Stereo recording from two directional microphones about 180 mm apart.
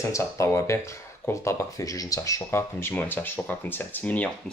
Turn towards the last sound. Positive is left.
turn(degrees=10)  # may be behind; listen again after turning